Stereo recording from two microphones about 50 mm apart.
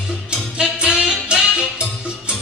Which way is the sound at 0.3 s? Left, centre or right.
Centre.